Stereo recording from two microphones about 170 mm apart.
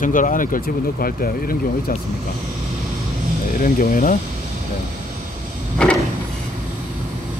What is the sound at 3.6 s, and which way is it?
Speech, 55° left (ahead or behind).